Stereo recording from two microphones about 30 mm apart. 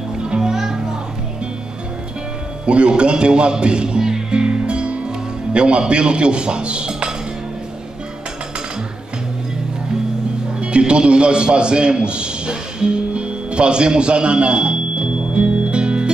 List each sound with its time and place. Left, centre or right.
0.4 s music: centre
2.6 s speech: right
4.1 s music: right
10.6 s a sound: right